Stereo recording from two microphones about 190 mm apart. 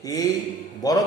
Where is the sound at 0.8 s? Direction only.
20° left (ahead or behind).